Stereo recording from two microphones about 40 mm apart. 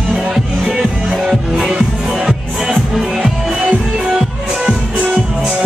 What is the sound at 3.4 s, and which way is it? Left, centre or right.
Music, right.